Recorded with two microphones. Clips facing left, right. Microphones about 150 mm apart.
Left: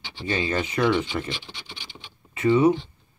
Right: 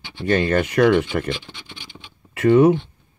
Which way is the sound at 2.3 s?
75° right (ahead or behind).